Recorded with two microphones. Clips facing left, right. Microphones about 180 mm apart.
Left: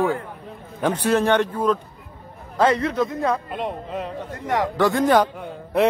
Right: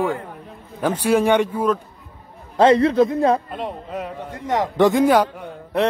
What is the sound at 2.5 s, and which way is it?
Speech, 30° right (ahead or behind).